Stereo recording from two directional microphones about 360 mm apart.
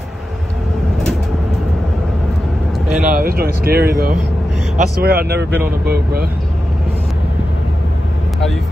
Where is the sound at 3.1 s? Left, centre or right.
Right.